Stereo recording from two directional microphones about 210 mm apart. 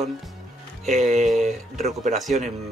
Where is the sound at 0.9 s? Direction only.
35° right (ahead or behind).